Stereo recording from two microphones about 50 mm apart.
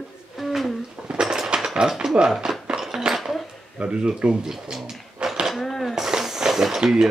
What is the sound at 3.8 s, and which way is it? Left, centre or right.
Speech, centre.